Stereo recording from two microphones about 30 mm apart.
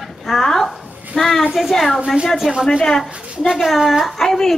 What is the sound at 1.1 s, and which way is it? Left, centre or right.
A woman's voice, centre.